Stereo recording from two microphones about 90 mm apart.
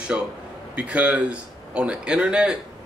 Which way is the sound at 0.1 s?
15° right (ahead or behind).